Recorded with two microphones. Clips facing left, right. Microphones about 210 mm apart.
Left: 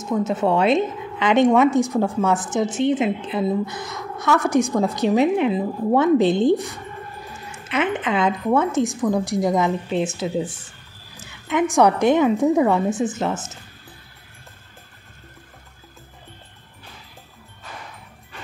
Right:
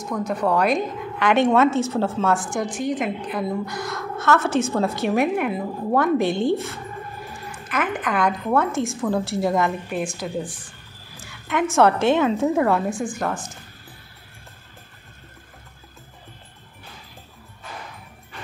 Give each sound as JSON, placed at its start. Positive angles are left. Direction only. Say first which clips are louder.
{"t": 0.0, "sound": "a woman's voice", "louder": "left 3 dB", "side_deg": 25}